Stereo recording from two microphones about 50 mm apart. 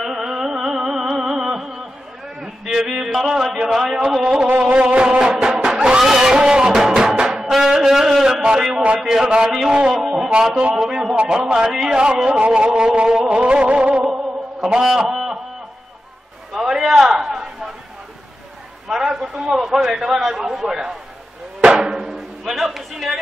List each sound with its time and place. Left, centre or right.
0.0 s music: centre
2.6 s a sound: centre
3.3 s a man's voice: centre
4.7 s music: centre
7.7 s a sound: centre
8.8 s a man's voice: centre
10.8 s a man's voice: centre
11.1 s a man's voice: centre
14.6 s a man's voice: centre
16.6 s a sound: centre
18.9 s a man's voice: centre
21.7 s music: centre